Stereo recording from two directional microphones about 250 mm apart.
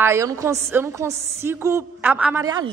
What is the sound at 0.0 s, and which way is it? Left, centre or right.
A woman's voice, centre.